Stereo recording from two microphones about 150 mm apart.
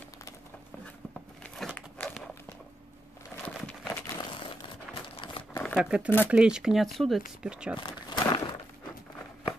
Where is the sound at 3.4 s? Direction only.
5° left (ahead or behind).